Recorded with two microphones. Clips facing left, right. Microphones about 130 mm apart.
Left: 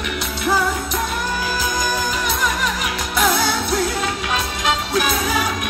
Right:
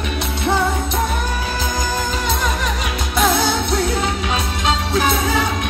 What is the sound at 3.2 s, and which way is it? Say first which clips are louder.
Music: right 2 dB; 25° right (ahead or behind).